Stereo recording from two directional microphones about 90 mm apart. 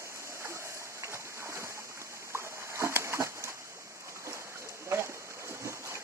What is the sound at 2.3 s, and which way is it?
Splash, 30° right (ahead or behind).